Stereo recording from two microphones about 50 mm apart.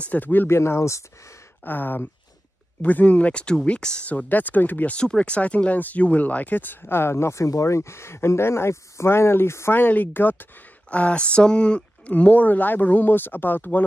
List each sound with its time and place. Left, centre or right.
0.0 s speech: left
0.5 s speech: left
1.6 s speech: left
2.8 s speech: left
4.3 s speech: left
4.9 s speech: left
9.8 s speech: left
10.9 s speech: left